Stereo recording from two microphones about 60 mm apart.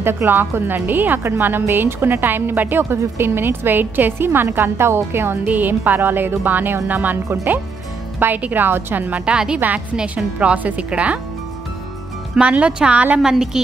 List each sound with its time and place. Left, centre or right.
0.0 s a woman's voice: right
5.5 s a woman's voice: right
8.2 s a woman's voice: right
9.2 s a woman's voice: centre
12.4 s a woman's voice: right